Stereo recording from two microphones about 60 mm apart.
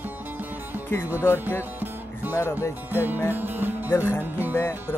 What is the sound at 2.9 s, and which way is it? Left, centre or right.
Music, right.